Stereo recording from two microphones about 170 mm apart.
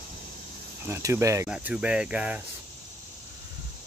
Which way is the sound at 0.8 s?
15° right (ahead or behind).